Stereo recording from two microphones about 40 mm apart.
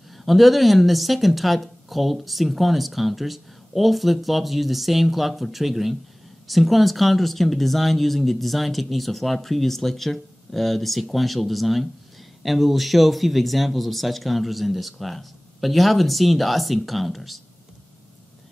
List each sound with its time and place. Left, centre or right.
0.2 s speech: centre